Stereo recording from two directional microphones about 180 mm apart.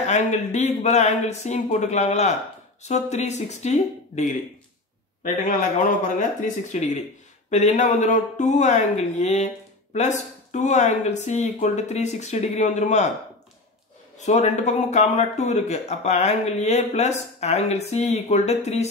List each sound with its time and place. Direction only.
0.0 s speech: 40° left (ahead or behind)
14.1 s speech: 40° left (ahead or behind)